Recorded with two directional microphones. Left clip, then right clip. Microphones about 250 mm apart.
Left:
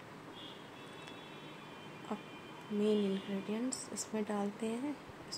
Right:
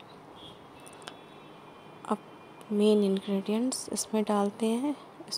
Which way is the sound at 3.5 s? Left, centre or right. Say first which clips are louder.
Right 8 dB; right.